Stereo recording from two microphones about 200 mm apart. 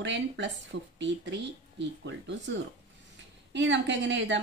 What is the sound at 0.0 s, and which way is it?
Speech, 65° right (ahead or behind).